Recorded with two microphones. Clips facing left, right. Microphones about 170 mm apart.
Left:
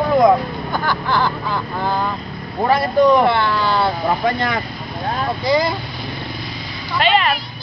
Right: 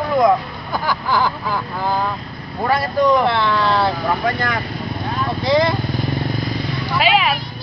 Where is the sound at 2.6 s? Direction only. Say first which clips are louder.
Left 2 dB; 25° left (ahead or behind).